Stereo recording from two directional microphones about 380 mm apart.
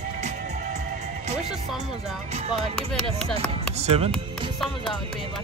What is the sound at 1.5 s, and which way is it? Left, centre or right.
Music, centre.